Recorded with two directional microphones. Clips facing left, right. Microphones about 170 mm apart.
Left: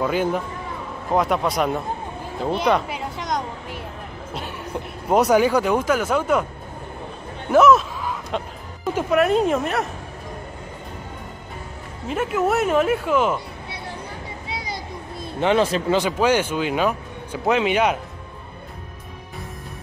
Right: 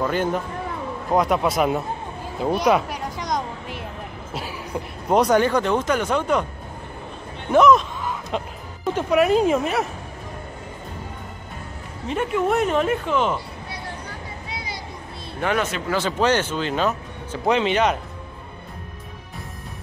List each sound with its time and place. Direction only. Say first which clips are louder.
0.0 s speech: left 1 dB; 10° left (ahead or behind)
2.4 s a sound: right 1 dB; 5° right (ahead or behind)
4.3 s speech: even; centre (ahead or behind)
7.5 s a sound: left 1 dB; 5° left (ahead or behind)
8.9 s speech: even; centre (ahead or behind)
12.1 s speech: even; 5° left (ahead or behind)
15.4 s speech: left 5 dB; 30° left (ahead or behind)
16.0 s speech: right 2 dB; 10° left (ahead or behind)